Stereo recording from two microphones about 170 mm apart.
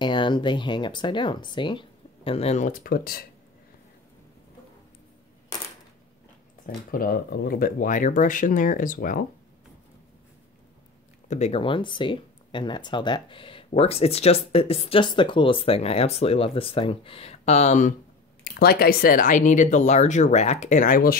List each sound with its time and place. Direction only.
0.0 s speech: 30° left (ahead or behind)
2.8 s speech: 60° left (ahead or behind)
6.6 s speech: 60° left (ahead or behind)
11.2 s speech: 40° left (ahead or behind)
18.4 s speech: 65° left (ahead or behind)